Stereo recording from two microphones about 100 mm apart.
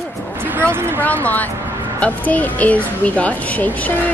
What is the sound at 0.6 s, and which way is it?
Speech, 25° right (ahead or behind).